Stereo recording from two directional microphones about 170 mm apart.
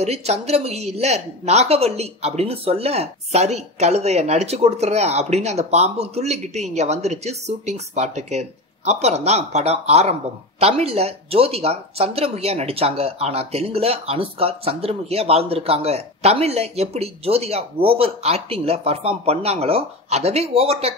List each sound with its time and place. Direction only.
0.0 s speech: 40° right (ahead or behind)